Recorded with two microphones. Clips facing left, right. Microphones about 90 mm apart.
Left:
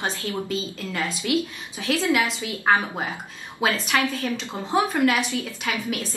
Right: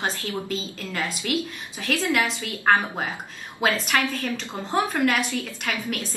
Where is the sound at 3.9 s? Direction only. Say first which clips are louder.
Left 2 dB; centre (ahead or behind).